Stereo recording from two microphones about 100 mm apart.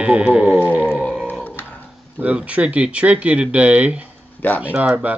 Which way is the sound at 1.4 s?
15° left (ahead or behind).